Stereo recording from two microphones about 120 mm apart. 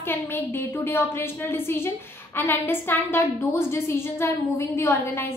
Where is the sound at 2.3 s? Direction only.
20° left (ahead or behind).